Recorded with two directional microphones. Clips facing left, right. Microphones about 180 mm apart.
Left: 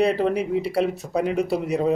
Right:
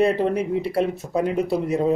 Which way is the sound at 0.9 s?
75° left (ahead or behind).